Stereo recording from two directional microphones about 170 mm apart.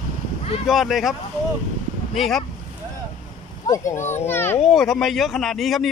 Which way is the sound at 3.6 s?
20° left (ahead or behind).